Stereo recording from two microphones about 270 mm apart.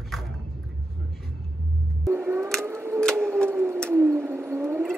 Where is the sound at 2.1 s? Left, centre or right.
Centre.